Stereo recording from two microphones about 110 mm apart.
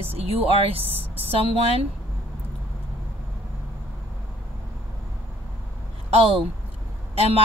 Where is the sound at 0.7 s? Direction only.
60° right (ahead or behind).